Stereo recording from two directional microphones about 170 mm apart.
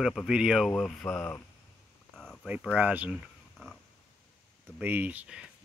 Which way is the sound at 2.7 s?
10° right (ahead or behind).